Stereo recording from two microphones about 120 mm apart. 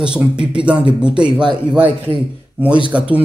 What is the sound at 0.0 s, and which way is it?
Speech, 10° right (ahead or behind).